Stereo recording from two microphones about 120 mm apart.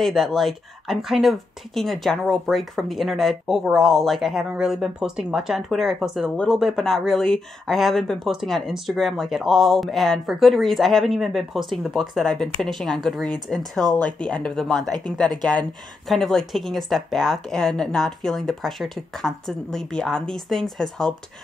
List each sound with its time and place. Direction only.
0.0 s speech: centre (ahead or behind)
16.1 s speech: 5° left (ahead or behind)